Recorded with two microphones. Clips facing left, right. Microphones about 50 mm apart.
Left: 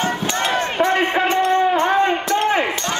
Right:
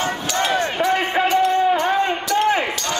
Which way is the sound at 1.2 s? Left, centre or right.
Left.